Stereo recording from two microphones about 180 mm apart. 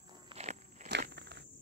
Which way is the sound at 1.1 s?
70° right (ahead or behind).